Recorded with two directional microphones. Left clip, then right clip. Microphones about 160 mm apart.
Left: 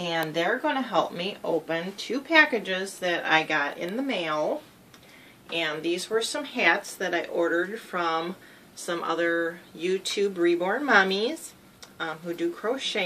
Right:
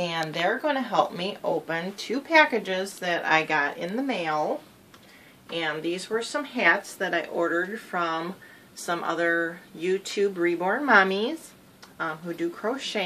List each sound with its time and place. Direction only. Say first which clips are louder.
0.3 s speech: right 1 dB; 65° right (ahead or behind)
5.5 s speech: left 1 dB; 35° right (ahead or behind)
12.0 s speech: even; 45° right (ahead or behind)